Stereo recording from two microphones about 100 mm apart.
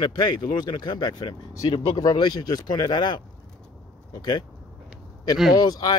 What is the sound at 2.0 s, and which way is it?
Speech, 40° left (ahead or behind).